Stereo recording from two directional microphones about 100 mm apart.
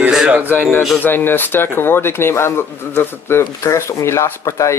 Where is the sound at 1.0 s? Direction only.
20° left (ahead or behind).